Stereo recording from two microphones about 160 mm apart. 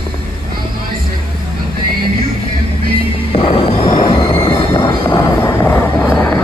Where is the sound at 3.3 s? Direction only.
35° left (ahead or behind).